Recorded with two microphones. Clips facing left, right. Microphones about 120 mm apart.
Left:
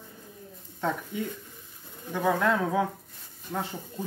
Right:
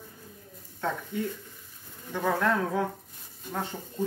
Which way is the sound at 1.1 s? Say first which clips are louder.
Right 1 dB; 15° left (ahead or behind).